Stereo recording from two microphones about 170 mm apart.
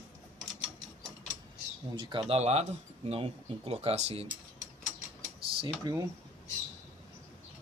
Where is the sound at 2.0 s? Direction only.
25° right (ahead or behind).